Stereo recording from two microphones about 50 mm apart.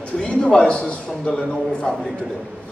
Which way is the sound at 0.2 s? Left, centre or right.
Left.